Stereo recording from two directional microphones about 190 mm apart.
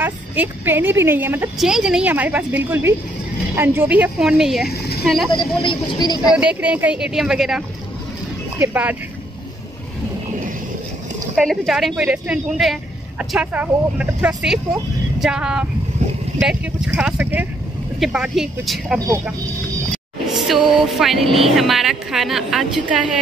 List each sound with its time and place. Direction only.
0.0 s a woman's voice: 10° right (ahead or behind)
4.6 s a woman's voice: 55° left (ahead or behind)
5.0 s speech: centre (ahead or behind)
5.6 s speech: 25° left (ahead or behind)
6.3 s a woman's voice: 5° right (ahead or behind)
11.3 s a woman's voice: centre (ahead or behind)
18.9 s a woman's voice: 15° right (ahead or behind)
20.2 s a sound: centre (ahead or behind)
20.7 s speech: centre (ahead or behind)